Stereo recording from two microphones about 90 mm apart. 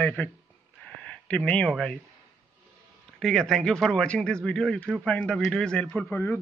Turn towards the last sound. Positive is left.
turn(degrees=20)  # may be behind; listen again after turning